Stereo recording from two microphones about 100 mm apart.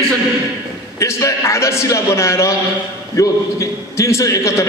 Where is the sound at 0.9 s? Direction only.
30° left (ahead or behind).